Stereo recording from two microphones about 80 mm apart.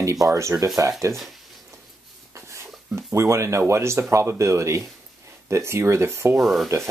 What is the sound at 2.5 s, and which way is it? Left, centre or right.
Speech, right.